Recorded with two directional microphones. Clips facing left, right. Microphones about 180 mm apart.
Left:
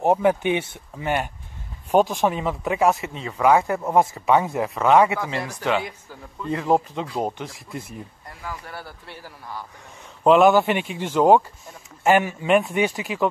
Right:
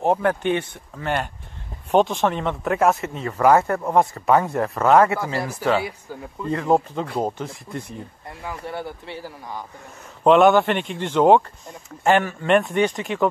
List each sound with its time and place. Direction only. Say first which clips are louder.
0.0 s speech: left 1 dB; 15° left (ahead or behind)
5.6 s speech: right 3 dB; 10° right (ahead or behind)
6.5 s speech: right 1 dB; centre (ahead or behind)
8.4 s speech: right 5 dB; 25° right (ahead or behind)
10.2 s speech: right 1 dB; centre (ahead or behind)